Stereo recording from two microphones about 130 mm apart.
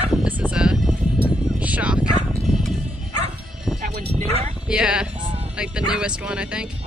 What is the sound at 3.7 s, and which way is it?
Music, 5° left (ahead or behind).